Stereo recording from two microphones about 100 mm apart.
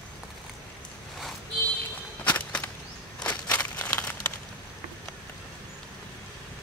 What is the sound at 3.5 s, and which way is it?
Crumpling, 15° left (ahead or behind).